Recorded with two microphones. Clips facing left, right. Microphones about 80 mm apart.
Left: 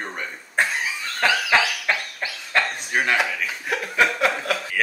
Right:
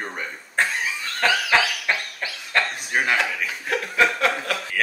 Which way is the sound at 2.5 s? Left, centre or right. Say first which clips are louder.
Even; centre.